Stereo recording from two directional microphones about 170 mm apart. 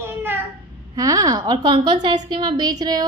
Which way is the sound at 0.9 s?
20° right (ahead or behind).